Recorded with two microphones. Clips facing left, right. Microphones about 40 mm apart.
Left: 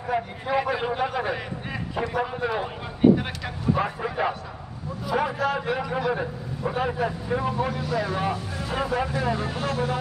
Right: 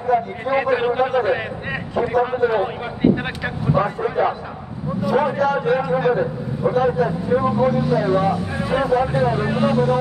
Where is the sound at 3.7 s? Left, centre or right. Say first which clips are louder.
Right 7 dB; centre.